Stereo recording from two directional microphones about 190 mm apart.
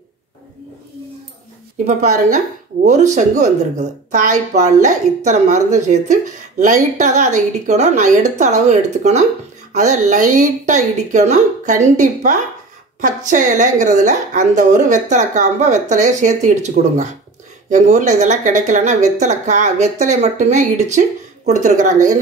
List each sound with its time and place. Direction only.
1.9 s speech: 40° right (ahead or behind)